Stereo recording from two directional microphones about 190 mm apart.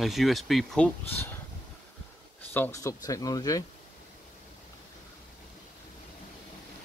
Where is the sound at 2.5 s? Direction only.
15° left (ahead or behind).